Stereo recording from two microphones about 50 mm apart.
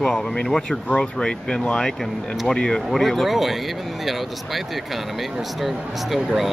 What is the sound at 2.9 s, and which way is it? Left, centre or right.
Speech, centre.